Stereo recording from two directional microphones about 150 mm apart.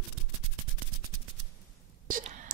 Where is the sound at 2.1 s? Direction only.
65° right (ahead or behind).